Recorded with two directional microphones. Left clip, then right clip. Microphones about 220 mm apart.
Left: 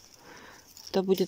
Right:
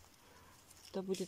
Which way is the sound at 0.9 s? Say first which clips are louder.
Left 14 dB; 40° left (ahead or behind).